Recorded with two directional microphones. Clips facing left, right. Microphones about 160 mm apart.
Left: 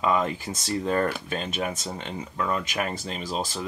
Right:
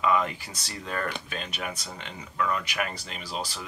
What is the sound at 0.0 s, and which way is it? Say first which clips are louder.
Speech: left 1 dB; 30° left (ahead or behind).